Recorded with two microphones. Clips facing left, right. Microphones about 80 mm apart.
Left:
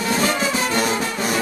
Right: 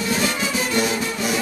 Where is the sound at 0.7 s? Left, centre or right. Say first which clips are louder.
Left 1 dB; left.